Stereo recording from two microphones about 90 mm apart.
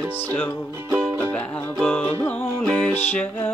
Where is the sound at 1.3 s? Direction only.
15° left (ahead or behind).